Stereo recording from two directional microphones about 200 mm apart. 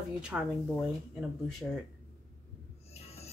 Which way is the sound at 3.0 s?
30° left (ahead or behind).